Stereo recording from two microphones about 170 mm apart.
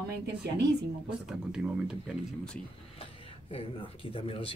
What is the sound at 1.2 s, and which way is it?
Speech, 5° right (ahead or behind).